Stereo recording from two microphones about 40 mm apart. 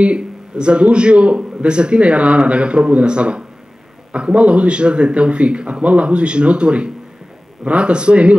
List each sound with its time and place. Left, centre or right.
0.0 s a man's voice: right